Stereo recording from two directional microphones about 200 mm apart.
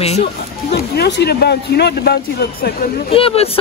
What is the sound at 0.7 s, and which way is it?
Speech, 55° left (ahead or behind).